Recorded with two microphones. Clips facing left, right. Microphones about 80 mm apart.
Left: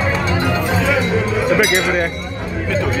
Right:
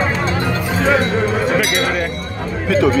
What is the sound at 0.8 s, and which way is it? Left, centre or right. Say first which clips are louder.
Music: right 2 dB; right.